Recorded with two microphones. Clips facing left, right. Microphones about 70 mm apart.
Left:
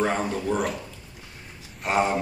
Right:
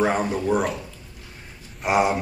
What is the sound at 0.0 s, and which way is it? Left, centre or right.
Speech, centre.